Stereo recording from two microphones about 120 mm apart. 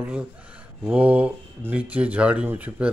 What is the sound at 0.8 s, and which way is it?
Speech, 10° right (ahead or behind).